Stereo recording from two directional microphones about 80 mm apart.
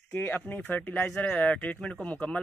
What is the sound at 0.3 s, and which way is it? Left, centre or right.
Speech, centre.